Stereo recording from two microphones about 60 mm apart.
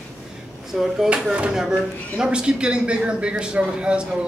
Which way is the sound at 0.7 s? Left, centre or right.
Centre.